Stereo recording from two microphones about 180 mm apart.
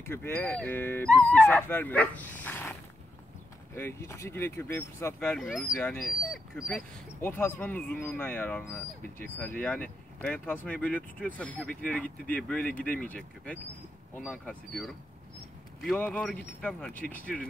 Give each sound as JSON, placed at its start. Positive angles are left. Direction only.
{"t": 0.0, "sound": "speech", "side_deg": 10}
{"t": 3.7, "sound": "speech", "side_deg": 15}
{"t": 5.4, "sound": "speech", "side_deg": -5}
{"t": 5.9, "sound": "speech", "side_deg": 50}
{"t": 6.7, "sound": "speech", "side_deg": 10}
{"t": 12.8, "sound": "speech", "side_deg": 50}
{"t": 14.1, "sound": "speech", "side_deg": 10}